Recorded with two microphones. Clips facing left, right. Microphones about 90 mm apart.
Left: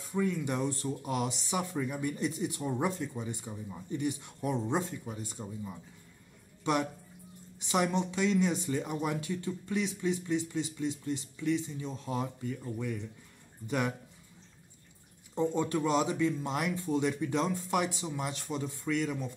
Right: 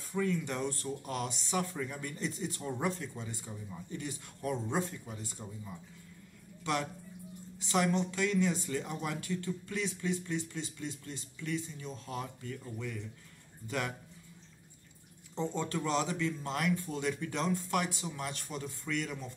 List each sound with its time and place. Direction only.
0.0 s a man's voice: 15° left (ahead or behind)
15.3 s speech: 15° left (ahead or behind)